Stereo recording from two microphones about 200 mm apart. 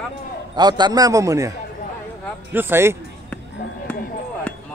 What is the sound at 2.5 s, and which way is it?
Speech, 10° right (ahead or behind).